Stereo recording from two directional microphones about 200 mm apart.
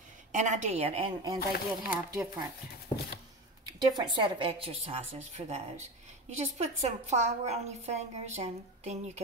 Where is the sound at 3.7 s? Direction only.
20° right (ahead or behind).